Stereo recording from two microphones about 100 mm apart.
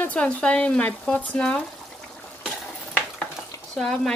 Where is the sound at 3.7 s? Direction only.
5° left (ahead or behind).